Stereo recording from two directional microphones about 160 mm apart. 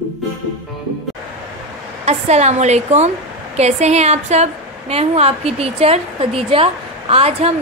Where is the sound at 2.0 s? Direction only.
45° right (ahead or behind).